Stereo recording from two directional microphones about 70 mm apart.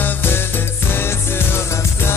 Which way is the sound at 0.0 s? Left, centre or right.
Left.